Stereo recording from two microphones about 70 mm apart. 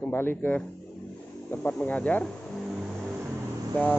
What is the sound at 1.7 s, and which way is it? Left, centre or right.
Speech, left.